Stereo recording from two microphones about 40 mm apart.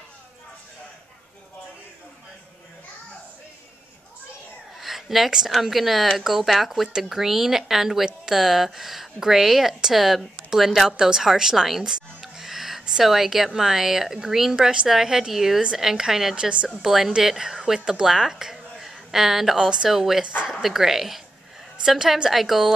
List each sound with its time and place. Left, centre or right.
4.7 s a sound: centre
5.5 s a woman's voice: centre
14.9 s speech: centre
16.3 s speech: right
16.6 s speech: centre
17.7 s a woman's voice: centre
19.9 s speech: centre
22.3 s speech: centre